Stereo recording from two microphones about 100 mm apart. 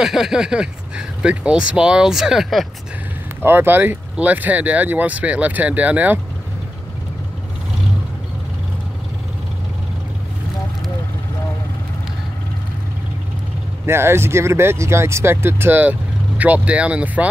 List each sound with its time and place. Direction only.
0.0 s speech: 5° right (ahead or behind)
3.4 s speech: 20° right (ahead or behind)
13.8 s speech: 25° right (ahead or behind)